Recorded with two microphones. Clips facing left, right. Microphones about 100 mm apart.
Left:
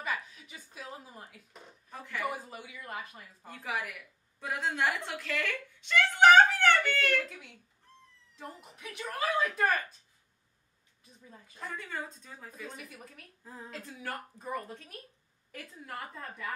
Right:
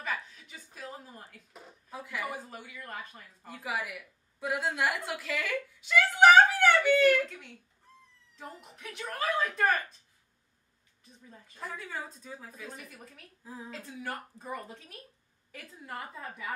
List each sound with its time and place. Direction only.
0.0 s a sound: 5° left (ahead or behind)
4.4 s a woman's voice: 5° right (ahead or behind)
11.2 s speech: 5° left (ahead or behind)